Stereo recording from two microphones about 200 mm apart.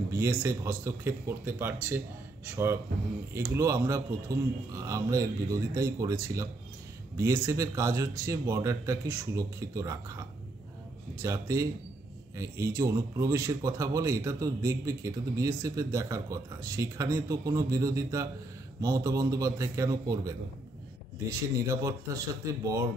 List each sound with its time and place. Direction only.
0.1 s a man's voice: 15° right (ahead or behind)
7.2 s a man's voice: 15° right (ahead or behind)
11.2 s a man's voice: 15° right (ahead or behind)